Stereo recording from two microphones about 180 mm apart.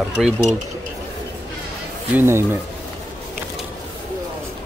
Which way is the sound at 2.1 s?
15° right (ahead or behind).